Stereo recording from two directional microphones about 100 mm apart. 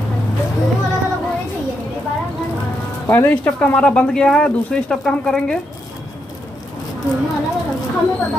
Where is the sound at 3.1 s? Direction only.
20° left (ahead or behind).